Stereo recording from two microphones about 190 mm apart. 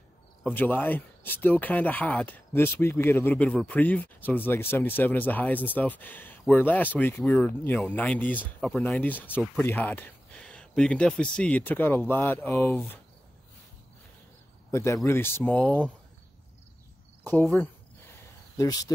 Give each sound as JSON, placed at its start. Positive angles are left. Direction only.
{"t": 0.4, "sound": "speech", "side_deg": 10}
{"t": 14.7, "sound": "speech", "side_deg": 15}
{"t": 18.6, "sound": "speech", "side_deg": 20}